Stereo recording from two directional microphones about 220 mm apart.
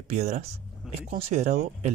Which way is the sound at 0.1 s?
30° right (ahead or behind).